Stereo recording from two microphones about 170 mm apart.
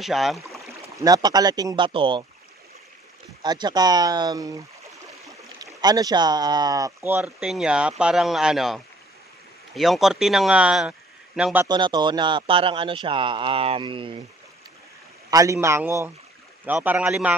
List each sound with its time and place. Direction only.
0.0 s speech: centre (ahead or behind)
0.9 s a man's voice: 20° right (ahead or behind)
3.4 s a man's voice: 25° right (ahead or behind); by 11.6 s 5° right (ahead or behind)
11.6 s a man's voice: 25° right (ahead or behind)
15.2 s a man's voice: 20° right (ahead or behind)